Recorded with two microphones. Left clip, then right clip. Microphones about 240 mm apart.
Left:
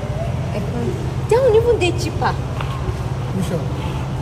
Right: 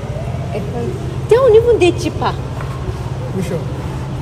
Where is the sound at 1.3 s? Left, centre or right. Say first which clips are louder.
Right 5 dB; right.